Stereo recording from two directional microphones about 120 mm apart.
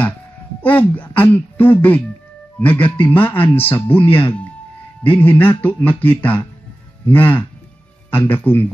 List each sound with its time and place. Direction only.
0.6 s speech: 15° left (ahead or behind)